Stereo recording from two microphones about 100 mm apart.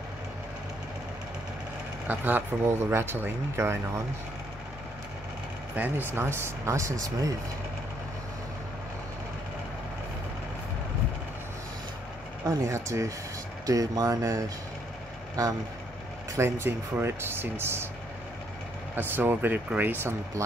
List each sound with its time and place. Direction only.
2.0 s speech: 15° right (ahead or behind)
5.8 s speech: 20° right (ahead or behind)
12.4 s speech: 30° right (ahead or behind)
16.3 s speech: 25° right (ahead or behind)
18.9 s speech: 20° right (ahead or behind)